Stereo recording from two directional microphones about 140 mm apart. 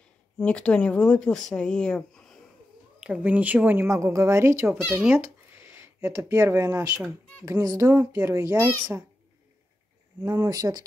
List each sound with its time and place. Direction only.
0.4 s speech: 10° left (ahead or behind)
3.0 s a woman's voice: 10° right (ahead or behind)
4.6 s a child's voice: 10° right (ahead or behind)
10.2 s a child's voice: 25° right (ahead or behind)